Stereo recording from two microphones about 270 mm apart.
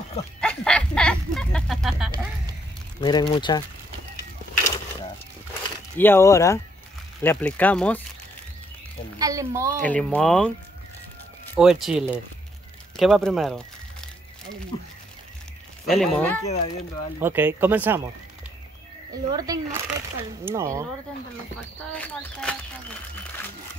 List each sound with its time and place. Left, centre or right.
0.4 s a sound: centre
3.0 s speech: centre
5.9 s speech: centre
9.2 s speech: centre
9.8 s speech: centre
11.5 s speech: centre
12.9 s a sound: centre
15.9 s speech: centre
16.4 s speech: left
17.2 s speech: centre
19.3 s speech: centre
21.9 s speech: centre